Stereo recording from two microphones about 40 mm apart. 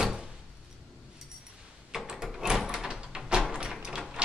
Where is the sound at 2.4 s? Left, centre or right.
Centre.